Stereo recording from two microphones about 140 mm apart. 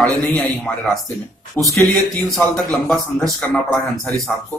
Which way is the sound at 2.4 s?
5° left (ahead or behind).